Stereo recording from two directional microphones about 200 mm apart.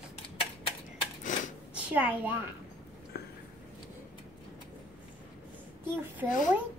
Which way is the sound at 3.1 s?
50° left (ahead or behind).